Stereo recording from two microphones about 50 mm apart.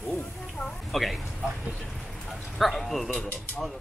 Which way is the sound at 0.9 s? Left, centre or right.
Centre.